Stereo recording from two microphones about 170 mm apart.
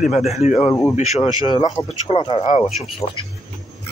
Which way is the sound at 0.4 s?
40° left (ahead or behind).